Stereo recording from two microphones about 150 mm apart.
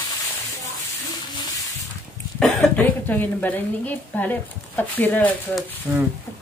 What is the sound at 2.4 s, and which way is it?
A woman's voice, 10° left (ahead or behind).